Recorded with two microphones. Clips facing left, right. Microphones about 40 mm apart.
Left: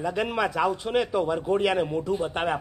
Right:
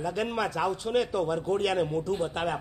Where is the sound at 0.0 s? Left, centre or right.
Centre.